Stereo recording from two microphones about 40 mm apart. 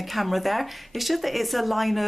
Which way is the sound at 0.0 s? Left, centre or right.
Centre.